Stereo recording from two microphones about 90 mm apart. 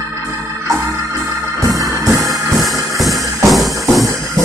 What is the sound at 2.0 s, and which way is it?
Music, 40° right (ahead or behind).